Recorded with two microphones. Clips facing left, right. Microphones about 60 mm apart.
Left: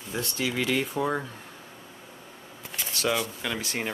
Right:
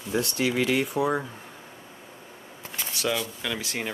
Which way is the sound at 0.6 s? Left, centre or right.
Centre.